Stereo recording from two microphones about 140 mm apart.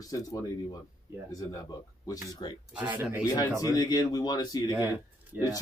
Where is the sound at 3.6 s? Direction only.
25° left (ahead or behind).